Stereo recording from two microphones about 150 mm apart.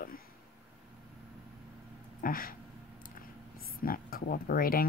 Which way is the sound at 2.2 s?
70° left (ahead or behind).